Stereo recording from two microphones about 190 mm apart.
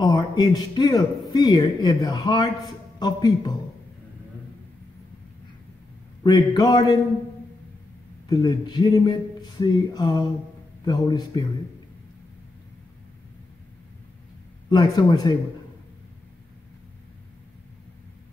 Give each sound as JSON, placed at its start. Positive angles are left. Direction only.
{"t": 0.0, "sound": "a man's voice", "side_deg": 20}
{"t": 6.2, "sound": "a man's voice", "side_deg": 20}
{"t": 8.3, "sound": "a man's voice", "side_deg": 25}
{"t": 14.7, "sound": "a man's voice", "side_deg": 25}